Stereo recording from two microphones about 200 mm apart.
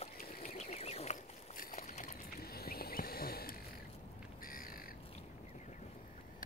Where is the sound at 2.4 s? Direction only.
50° left (ahead or behind).